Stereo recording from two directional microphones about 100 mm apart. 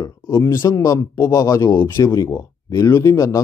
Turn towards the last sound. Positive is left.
turn(degrees=30)  # may be behind; listen again after turning